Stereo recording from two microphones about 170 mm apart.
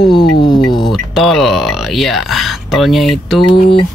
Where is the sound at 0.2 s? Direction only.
30° left (ahead or behind).